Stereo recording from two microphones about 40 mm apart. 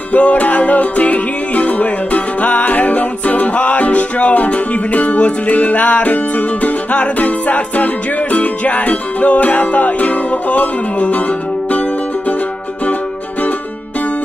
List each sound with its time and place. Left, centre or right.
0.1 s music: left